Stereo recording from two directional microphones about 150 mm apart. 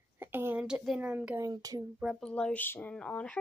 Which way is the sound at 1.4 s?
25° right (ahead or behind).